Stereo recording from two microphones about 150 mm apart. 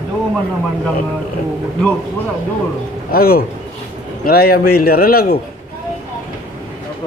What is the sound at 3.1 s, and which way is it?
A man's voice, 85° left.